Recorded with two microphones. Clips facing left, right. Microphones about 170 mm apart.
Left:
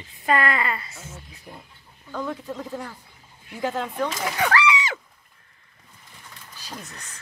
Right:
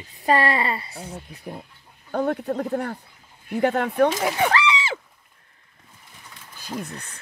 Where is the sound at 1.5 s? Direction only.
55° right (ahead or behind).